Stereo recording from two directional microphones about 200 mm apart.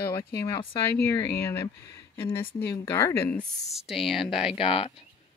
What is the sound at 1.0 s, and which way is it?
Speech, 15° left (ahead or behind).